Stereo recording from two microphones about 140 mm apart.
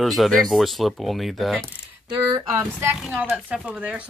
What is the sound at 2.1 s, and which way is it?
Speech, 30° right (ahead or behind).